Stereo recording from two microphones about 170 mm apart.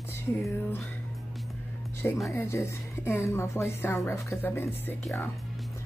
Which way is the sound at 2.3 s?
15° left (ahead or behind).